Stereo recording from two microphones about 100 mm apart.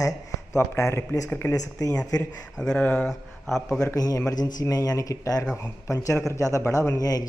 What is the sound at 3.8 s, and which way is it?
Speech, 35° left (ahead or behind).